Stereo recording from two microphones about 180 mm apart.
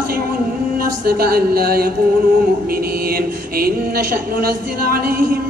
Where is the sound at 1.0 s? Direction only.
55° right (ahead or behind).